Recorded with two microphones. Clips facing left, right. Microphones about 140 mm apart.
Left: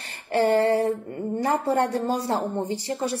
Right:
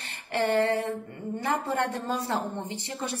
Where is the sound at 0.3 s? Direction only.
35° left (ahead or behind).